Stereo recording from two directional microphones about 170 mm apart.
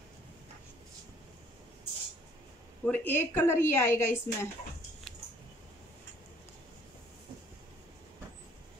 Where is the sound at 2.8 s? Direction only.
10° left (ahead or behind).